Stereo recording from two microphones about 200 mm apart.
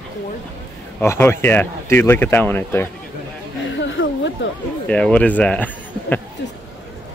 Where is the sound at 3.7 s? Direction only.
70° left (ahead or behind).